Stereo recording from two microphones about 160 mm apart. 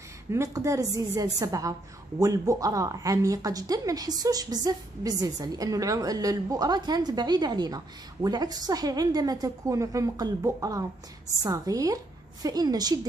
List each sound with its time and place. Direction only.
0.3 s a woman's voice: 20° right (ahead or behind)